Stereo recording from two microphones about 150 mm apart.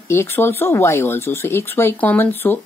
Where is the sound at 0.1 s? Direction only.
15° left (ahead or behind).